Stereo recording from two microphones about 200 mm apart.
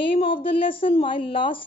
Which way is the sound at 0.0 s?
25° left (ahead or behind).